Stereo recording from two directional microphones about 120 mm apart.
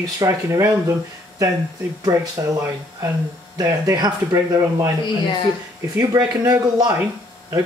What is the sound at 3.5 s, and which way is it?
Speech, 25° right (ahead or behind).